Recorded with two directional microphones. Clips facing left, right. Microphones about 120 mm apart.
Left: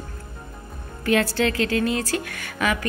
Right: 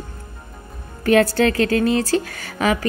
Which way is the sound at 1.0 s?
40° right (ahead or behind).